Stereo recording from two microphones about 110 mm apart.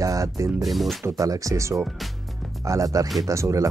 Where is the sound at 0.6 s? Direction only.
Centre (ahead or behind).